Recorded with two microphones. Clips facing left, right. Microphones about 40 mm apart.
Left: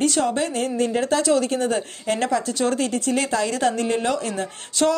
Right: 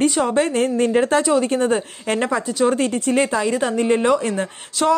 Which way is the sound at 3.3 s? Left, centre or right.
Centre.